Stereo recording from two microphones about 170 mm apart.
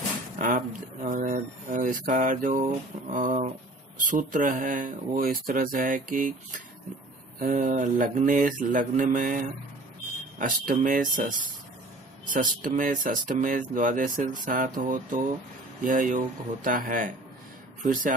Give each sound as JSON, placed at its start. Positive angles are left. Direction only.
{"t": 0.4, "sound": "speech", "side_deg": -50}
{"t": 10.4, "sound": "speech", "side_deg": -55}